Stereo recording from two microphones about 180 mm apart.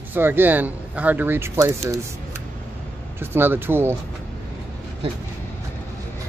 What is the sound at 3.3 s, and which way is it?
Speech, 10° right (ahead or behind).